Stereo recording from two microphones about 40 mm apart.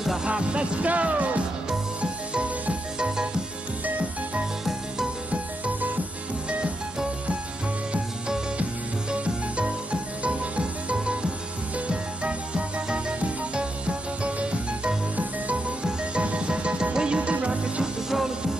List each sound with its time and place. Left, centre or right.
0.2 s music: right
5.3 s music: right
9.1 s music: right
15.1 s music: right